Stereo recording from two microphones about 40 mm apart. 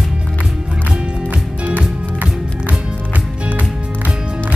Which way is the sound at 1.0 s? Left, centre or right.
Right.